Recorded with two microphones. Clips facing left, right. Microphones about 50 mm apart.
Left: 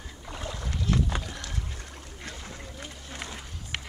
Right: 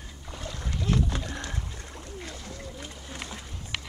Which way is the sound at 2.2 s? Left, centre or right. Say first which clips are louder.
Right 1 dB; left.